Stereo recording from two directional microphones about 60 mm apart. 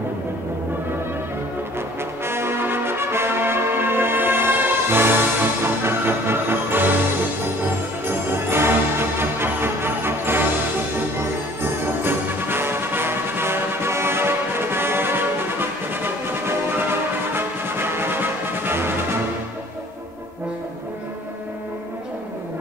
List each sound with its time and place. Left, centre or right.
2.2 s music: right
8.1 s music: right